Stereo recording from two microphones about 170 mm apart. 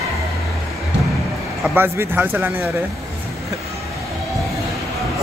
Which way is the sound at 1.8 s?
10° right (ahead or behind).